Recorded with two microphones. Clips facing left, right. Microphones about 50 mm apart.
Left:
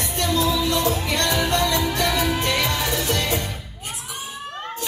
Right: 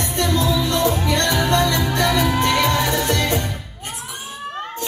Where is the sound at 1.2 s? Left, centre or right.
Right.